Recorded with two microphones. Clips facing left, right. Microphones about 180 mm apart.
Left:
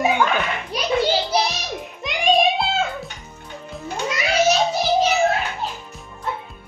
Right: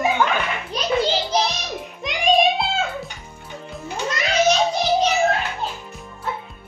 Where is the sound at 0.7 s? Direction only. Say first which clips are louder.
Left 1 dB; 10° left (ahead or behind).